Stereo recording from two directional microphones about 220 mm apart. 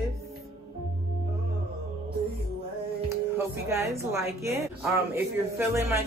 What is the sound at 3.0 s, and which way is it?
Music, 10° right (ahead or behind).